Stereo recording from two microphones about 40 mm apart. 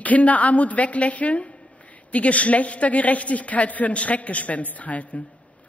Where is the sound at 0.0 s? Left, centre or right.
Left.